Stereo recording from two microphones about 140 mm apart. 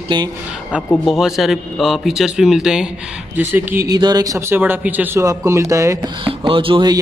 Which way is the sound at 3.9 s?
30° right (ahead or behind).